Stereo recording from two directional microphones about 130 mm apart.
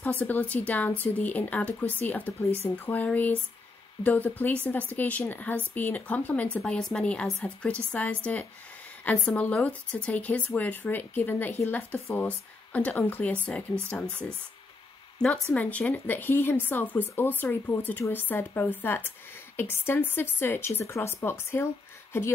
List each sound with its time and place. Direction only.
0.0 s speech: 10° left (ahead or behind)
15.1 s speech: 5° left (ahead or behind); by 21.6 s 20° left (ahead or behind)